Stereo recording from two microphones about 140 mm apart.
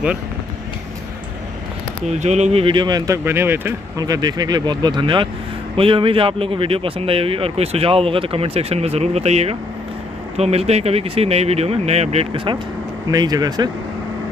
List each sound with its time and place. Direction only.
2.0 s speech: 55° right (ahead or behind); by 3.2 s 30° right (ahead or behind)
3.3 s speech: 15° right (ahead or behind)
4.0 s speech: 30° right (ahead or behind); by 12.3 s 50° right (ahead or behind)
13.1 s speech: 30° right (ahead or behind)